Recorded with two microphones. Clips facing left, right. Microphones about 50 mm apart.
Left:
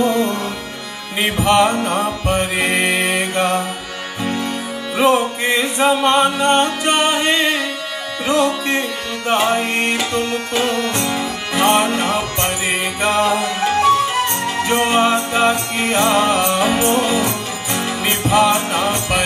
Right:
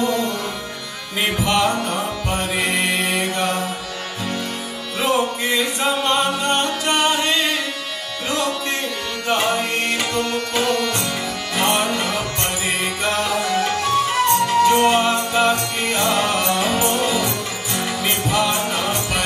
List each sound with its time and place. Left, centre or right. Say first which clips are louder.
0.0 s music: left 4 dB; left
4.9 s music: left 5 dB; left